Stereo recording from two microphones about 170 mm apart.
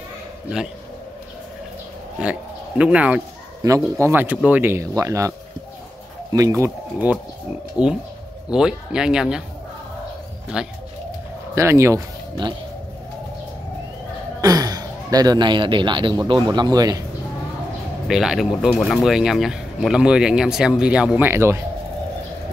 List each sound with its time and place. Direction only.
2.2 s speech: 5° right (ahead or behind)
6.3 s speech: 20° right (ahead or behind)
10.5 s speech: 5° right (ahead or behind)
11.5 s speech: 15° right (ahead or behind)
14.4 s speech: 20° right (ahead or behind)
18.0 s speech: centre (ahead or behind)